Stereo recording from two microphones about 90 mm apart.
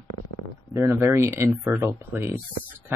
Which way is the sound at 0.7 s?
30° right (ahead or behind).